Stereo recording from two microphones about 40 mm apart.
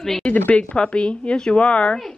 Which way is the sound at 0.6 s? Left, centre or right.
Left.